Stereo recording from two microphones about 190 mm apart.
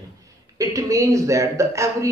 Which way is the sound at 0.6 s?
15° right (ahead or behind).